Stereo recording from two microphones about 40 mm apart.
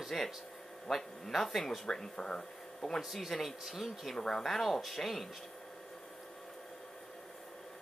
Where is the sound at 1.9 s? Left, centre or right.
Centre.